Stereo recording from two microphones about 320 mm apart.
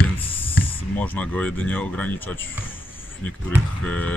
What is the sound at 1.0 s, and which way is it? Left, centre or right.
Speech, centre.